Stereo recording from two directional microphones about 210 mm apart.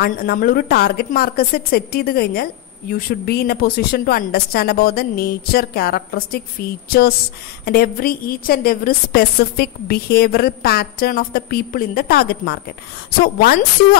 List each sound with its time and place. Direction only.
0.0 s a woman's voice: 45° left (ahead or behind)